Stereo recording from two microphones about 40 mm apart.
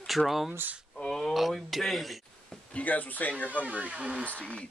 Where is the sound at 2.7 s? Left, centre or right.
Left.